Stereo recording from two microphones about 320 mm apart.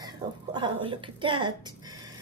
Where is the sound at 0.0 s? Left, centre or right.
Centre.